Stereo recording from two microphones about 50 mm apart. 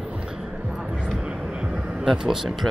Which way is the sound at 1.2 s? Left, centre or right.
Centre.